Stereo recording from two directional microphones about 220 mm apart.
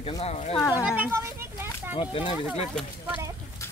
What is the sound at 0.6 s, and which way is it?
Speech, 15° left (ahead or behind).